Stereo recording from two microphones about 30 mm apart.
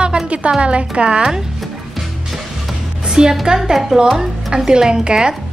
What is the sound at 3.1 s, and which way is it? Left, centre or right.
A woman's voice, right.